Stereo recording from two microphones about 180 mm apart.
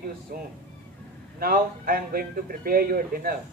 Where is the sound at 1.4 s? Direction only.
55° right (ahead or behind).